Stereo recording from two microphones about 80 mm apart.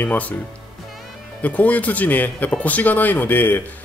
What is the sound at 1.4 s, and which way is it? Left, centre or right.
Speech, centre.